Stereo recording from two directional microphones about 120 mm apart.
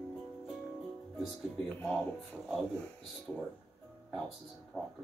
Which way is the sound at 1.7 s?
15° left (ahead or behind).